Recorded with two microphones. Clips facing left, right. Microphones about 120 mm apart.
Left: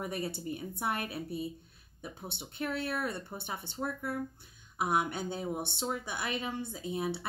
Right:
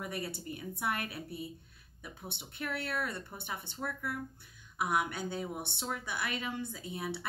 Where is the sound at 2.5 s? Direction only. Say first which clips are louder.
Left 3 dB; 25° left (ahead or behind).